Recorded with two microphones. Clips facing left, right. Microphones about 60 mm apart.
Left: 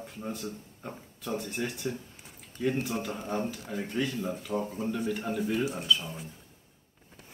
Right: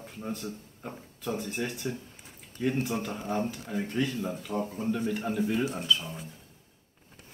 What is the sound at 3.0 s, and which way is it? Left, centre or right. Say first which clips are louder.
Speech: right 1 dB; centre.